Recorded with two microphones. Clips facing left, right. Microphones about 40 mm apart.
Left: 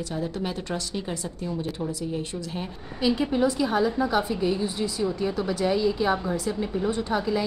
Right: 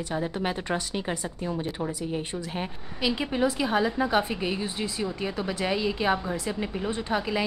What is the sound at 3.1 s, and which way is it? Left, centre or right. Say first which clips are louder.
A woman's voice: left 2 dB; centre.